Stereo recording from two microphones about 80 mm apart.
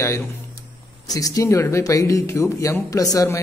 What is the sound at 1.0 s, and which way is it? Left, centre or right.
Speech, left.